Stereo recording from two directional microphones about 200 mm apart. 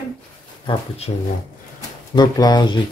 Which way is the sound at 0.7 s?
30° left (ahead or behind).